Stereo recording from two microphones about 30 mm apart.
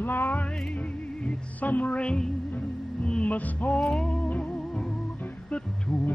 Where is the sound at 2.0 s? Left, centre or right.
Left.